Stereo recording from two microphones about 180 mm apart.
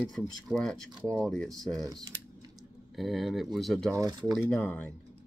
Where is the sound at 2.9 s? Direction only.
Centre (ahead or behind).